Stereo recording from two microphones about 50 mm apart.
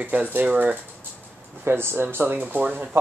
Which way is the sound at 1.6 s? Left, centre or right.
Right.